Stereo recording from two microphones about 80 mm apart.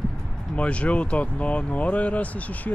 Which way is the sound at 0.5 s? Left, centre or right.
Centre.